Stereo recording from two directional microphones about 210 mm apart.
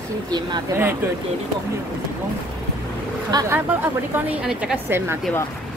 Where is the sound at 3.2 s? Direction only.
15° right (ahead or behind).